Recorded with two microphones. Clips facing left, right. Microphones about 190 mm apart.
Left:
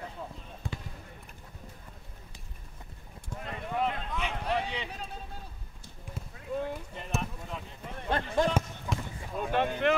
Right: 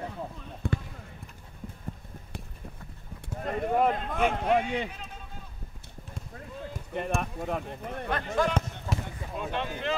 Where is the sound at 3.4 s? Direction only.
45° right (ahead or behind).